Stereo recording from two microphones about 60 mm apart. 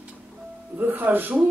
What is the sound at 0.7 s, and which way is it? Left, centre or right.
Speech, right.